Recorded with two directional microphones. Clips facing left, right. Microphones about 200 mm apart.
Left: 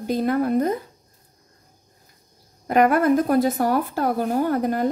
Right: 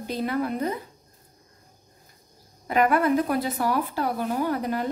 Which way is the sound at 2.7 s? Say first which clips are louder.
Left 4 dB; 45° left (ahead or behind).